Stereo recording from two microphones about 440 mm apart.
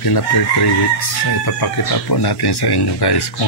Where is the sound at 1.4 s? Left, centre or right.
Left.